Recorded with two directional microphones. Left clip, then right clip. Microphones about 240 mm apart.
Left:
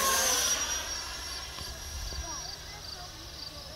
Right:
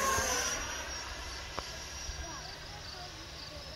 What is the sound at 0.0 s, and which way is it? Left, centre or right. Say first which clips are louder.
Vehicle: left 4 dB; centre.